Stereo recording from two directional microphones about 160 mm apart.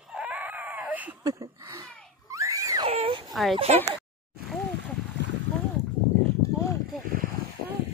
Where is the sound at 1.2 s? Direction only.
20° right (ahead or behind).